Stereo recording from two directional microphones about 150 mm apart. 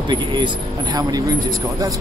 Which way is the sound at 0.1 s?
30° right (ahead or behind).